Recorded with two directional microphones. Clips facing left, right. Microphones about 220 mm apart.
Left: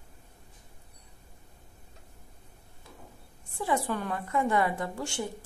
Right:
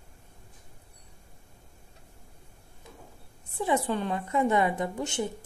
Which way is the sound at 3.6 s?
20° right (ahead or behind).